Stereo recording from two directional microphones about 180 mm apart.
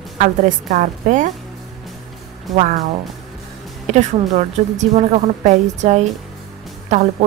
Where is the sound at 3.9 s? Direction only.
40° right (ahead or behind).